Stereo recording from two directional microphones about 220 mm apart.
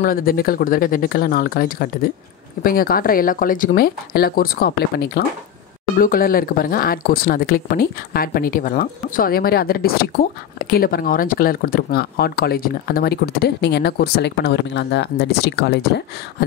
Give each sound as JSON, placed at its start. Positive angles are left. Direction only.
{"t": 0.0, "sound": "speech", "side_deg": 40}